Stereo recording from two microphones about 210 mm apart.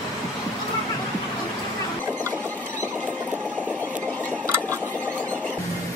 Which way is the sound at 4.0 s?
5° left (ahead or behind).